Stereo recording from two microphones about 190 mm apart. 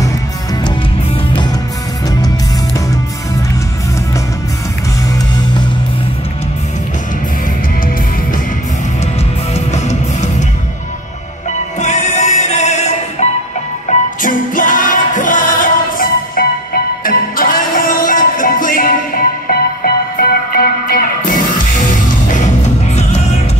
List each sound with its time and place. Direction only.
9.5 s music: 35° left (ahead or behind)
11.8 s music: 40° left (ahead or behind)